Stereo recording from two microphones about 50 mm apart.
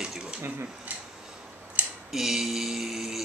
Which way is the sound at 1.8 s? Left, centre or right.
Right.